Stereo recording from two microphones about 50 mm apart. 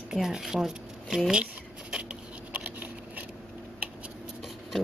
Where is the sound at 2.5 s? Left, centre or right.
Right.